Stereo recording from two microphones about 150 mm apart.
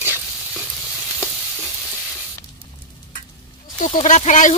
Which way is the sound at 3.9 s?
50° left (ahead or behind).